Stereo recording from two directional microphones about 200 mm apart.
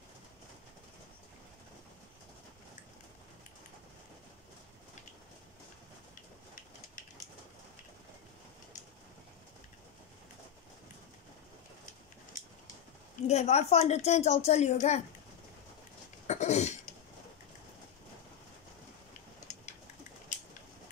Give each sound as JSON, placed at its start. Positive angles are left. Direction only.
{"t": 13.3, "sound": "a woman's voice", "side_deg": 35}
{"t": 16.3, "sound": "throat clearing", "side_deg": 35}